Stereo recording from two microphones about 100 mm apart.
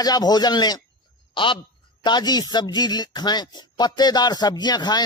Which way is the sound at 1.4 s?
55° left (ahead or behind).